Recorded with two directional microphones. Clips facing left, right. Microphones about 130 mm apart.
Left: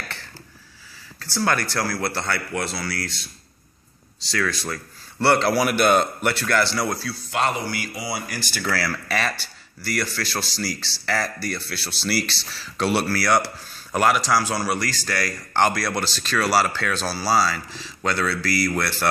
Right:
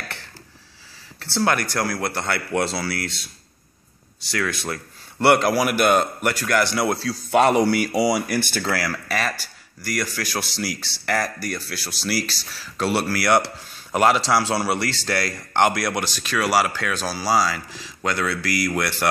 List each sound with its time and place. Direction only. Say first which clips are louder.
1.4 s speech: right 1 dB; 15° right (ahead or behind)
2.7 s speech: right 3 dB; 30° right (ahead or behind)
4.4 s speech: even; 20° right (ahead or behind)
7.2 s speech: right 8 dB; 60° right (ahead or behind)
8.8 s speech: even; 10° right (ahead or behind)
12.2 s speech: left 1 dB; 40° right (ahead or behind)
12.5 s speech: even; 5° right (ahead or behind)